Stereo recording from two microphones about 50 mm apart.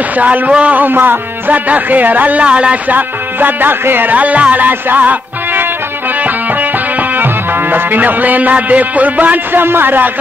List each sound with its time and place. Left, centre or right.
0.5 s speech: right
0.8 s music: right
1.7 s speech: right
2.4 s speech: right
2.9 s speech: right
7.7 s speech: right